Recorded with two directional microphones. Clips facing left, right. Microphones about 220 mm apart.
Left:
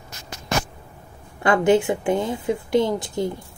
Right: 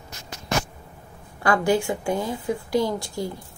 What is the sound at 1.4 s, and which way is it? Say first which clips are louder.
A woman's voice: left 4 dB; 20° left (ahead or behind).